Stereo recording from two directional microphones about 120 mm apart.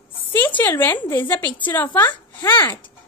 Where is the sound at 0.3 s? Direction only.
15° left (ahead or behind).